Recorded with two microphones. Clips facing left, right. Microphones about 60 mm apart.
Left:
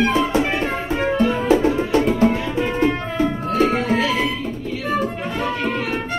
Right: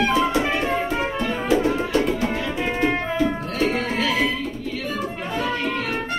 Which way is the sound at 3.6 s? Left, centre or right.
Left.